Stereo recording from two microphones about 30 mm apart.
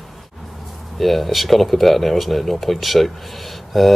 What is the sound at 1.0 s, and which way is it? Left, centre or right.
Speech, centre.